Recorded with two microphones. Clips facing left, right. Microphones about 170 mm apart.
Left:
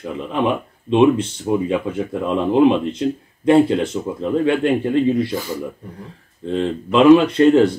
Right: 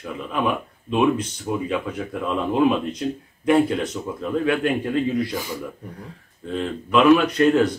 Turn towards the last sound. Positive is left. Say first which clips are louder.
# left 5 dB
turn(degrees=30)  # may be behind; listen again after turning